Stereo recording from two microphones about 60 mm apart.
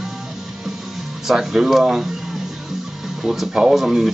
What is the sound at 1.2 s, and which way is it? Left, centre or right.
Speech, centre.